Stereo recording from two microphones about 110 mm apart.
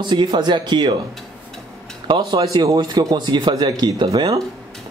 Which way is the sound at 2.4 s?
35° right (ahead or behind).